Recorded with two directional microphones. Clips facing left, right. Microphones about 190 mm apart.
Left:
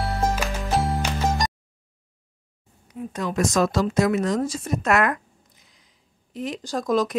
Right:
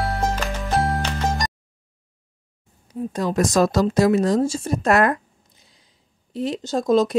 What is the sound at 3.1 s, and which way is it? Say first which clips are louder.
A woman's voice: right 3 dB; 35° right (ahead or behind).